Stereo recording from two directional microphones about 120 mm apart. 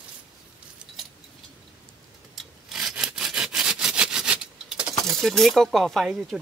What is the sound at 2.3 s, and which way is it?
Sawing, 5° right (ahead or behind).